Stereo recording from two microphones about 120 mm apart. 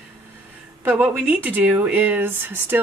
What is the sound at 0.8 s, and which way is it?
Speech, 15° right (ahead or behind).